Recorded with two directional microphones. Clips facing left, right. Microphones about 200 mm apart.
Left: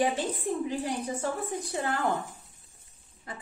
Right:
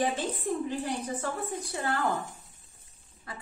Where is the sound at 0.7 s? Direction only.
10° left (ahead or behind).